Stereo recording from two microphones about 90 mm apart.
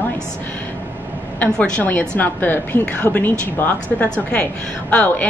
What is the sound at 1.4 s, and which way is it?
A woman's voice, 15° left (ahead or behind).